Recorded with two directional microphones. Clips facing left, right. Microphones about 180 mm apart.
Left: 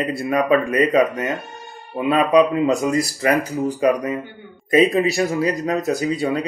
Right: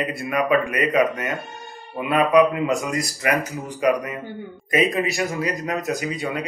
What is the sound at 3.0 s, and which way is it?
Speech, 35° left (ahead or behind).